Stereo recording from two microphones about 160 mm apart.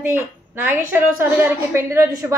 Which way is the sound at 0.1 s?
10° right (ahead or behind).